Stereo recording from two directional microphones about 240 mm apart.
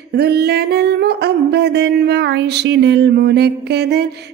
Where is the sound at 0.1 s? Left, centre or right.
Right.